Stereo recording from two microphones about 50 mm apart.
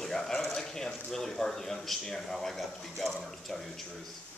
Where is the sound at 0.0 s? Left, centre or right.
Centre.